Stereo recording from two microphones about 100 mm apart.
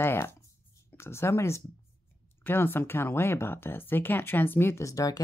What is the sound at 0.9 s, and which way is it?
Speech, 25° left (ahead or behind).